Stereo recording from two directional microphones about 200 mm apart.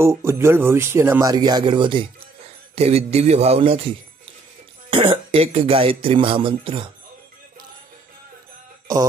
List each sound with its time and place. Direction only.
0.0 s speech: 15° right (ahead or behind); by 3.9 s 30° right (ahead or behind)
4.9 s speech: 25° right (ahead or behind)